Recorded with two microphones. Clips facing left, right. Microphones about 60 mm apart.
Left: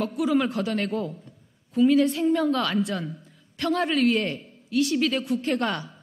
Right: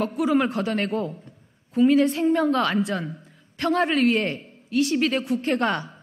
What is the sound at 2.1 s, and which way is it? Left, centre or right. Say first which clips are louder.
A woman's voice: right 2 dB; right.